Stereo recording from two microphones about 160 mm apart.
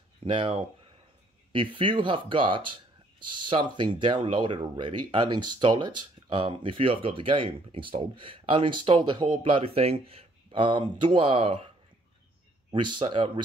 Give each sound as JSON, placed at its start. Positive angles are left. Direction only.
{"t": 0.2, "sound": "speech", "side_deg": -35}
{"t": 12.7, "sound": "speech", "side_deg": -30}